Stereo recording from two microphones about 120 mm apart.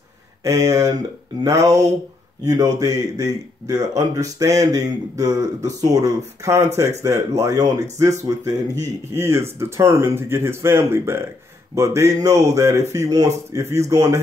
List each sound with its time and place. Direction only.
0.4 s speech: 25° right (ahead or behind)
2.4 s speech: 30° right (ahead or behind)